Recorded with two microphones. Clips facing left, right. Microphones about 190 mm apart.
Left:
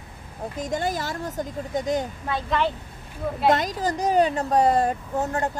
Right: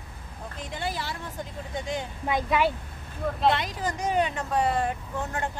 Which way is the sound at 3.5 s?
40° left (ahead or behind).